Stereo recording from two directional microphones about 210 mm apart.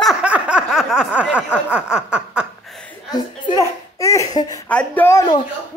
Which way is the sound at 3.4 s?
15° left (ahead or behind).